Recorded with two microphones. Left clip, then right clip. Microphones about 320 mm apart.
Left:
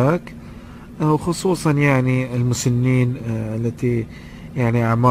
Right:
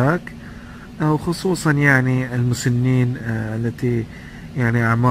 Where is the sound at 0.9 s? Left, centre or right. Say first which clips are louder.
Left 1 dB; centre.